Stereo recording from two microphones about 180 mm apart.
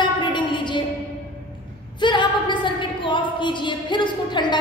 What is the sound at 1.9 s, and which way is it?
A woman's voice, 25° left (ahead or behind).